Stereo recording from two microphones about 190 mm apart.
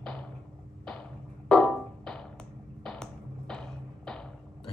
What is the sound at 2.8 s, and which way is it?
Tap, 5° left (ahead or behind).